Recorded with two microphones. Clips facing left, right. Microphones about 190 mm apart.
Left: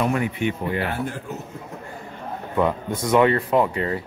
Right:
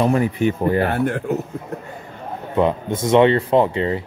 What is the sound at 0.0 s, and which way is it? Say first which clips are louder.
A man's voice: right 5 dB; 35° right (ahead or behind).